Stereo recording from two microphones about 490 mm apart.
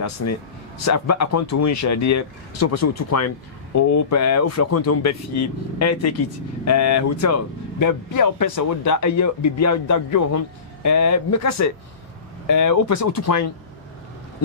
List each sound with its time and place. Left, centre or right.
0.0 s speech: left